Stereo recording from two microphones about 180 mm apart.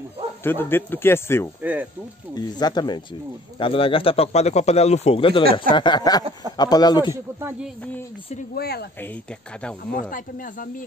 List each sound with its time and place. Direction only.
0.4 s speech: 10° left (ahead or behind)
1.6 s speech: 10° right (ahead or behind)
2.3 s speech: 25° left (ahead or behind)
8.5 s speech: 60° left (ahead or behind)
9.9 s speech: 50° left (ahead or behind)